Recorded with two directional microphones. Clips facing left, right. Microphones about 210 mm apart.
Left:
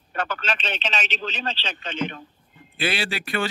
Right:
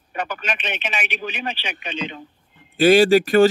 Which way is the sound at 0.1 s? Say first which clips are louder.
Right 1 dB; 15° right (ahead or behind).